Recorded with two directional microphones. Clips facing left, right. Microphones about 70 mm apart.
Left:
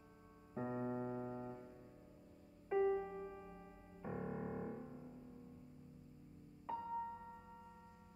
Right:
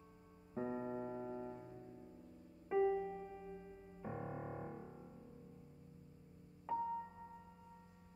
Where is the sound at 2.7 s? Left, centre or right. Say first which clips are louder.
Right 1 dB; centre.